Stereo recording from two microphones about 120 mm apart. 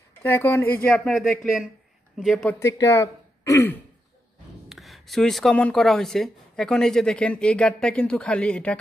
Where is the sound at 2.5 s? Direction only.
25° left (ahead or behind).